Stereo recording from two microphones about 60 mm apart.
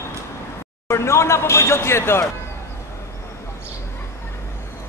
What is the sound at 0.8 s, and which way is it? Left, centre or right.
Speech, left.